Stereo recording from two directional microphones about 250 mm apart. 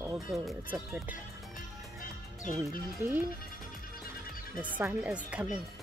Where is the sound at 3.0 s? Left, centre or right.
Centre.